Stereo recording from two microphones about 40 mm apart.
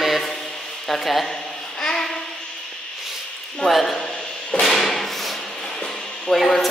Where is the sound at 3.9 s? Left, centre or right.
Left.